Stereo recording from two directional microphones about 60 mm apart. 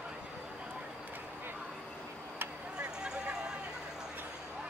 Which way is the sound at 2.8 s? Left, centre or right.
Centre.